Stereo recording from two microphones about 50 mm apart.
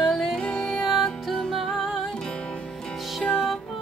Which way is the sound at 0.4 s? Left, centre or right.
Centre.